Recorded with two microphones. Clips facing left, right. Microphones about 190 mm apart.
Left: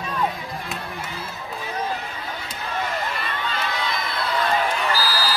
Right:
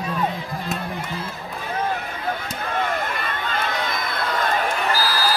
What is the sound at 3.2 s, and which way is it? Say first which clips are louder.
Run: right 2 dB; 50° right (ahead or behind).